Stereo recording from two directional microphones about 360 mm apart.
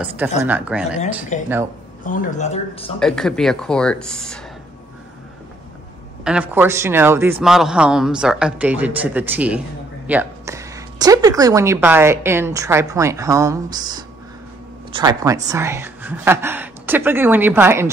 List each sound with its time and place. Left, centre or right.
0.4 s a man's voice: centre
1.3 s speech: centre
3.0 s a man's voice: centre
6.2 s a man's voice: centre